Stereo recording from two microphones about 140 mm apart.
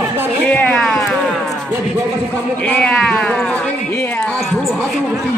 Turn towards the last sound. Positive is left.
turn(degrees=10)  # may be behind; listen again after turning